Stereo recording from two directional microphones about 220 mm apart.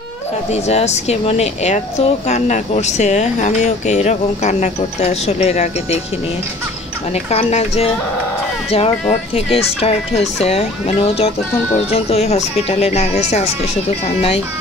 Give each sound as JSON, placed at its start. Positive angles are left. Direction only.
{"t": 0.5, "sound": "speech", "side_deg": 30}
{"t": 7.2, "sound": "speech", "side_deg": 30}